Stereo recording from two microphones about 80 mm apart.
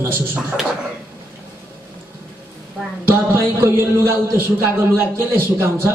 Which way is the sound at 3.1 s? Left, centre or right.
Right.